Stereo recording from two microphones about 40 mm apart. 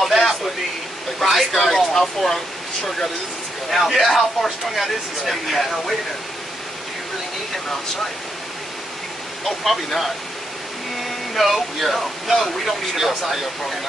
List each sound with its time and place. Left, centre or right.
0.0 s a sound: centre
1.2 s speech: centre
2.0 s speech: centre
3.7 s speech: centre
11.0 s speech: centre